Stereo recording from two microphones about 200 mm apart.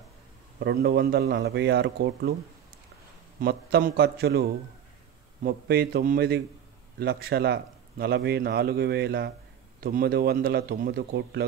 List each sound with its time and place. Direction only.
0.6 s a man's voice: 50° right (ahead or behind)
3.3 s a man's voice: 50° right (ahead or behind)